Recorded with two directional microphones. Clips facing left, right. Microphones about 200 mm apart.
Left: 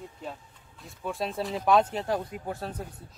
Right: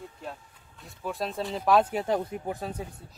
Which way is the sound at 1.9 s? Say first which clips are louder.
Right 2 dB; 20° right (ahead or behind).